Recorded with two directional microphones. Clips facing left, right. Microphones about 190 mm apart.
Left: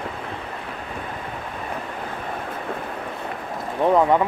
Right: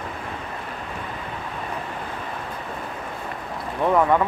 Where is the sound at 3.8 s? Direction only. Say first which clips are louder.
Left 2 dB; 20° left (ahead or behind).